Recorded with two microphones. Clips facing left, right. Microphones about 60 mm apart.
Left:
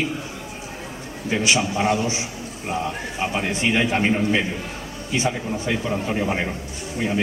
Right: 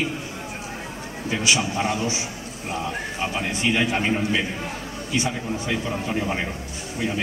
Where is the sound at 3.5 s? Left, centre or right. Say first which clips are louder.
Left 1 dB; left.